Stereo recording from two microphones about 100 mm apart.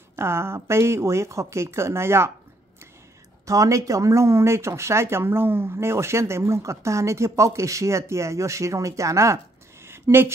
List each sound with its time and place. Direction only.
0.1 s speech: 25° right (ahead or behind)
3.4 s speech: 35° right (ahead or behind)
9.8 s a sound: 25° right (ahead or behind)